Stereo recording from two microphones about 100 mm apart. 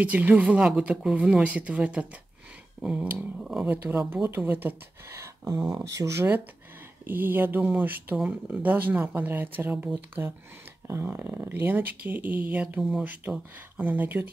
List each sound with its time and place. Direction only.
0.0 s speech: 15° right (ahead or behind)
3.6 s speech: 20° right (ahead or behind)
10.2 s speech: 30° right (ahead or behind)